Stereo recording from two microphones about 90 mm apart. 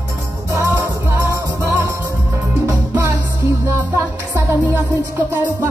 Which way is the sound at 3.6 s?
30° right (ahead or behind).